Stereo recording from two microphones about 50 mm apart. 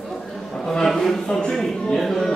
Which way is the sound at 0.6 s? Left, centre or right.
Centre.